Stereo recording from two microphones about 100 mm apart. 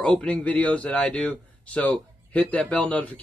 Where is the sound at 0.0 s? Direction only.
10° left (ahead or behind).